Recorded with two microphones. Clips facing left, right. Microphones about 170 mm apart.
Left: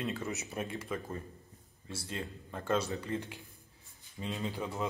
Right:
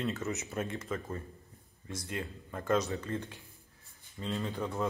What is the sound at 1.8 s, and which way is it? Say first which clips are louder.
Speech: right 2 dB; 30° left (ahead or behind).